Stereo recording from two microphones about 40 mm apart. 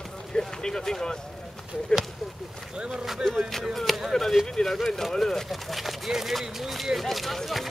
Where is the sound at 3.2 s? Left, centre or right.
Centre.